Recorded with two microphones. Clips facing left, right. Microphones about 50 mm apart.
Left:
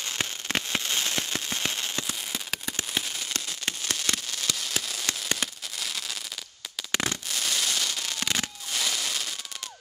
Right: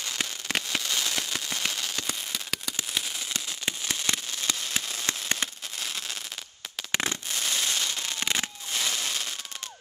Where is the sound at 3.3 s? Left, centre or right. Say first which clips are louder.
Even; centre; by 9.3 s right.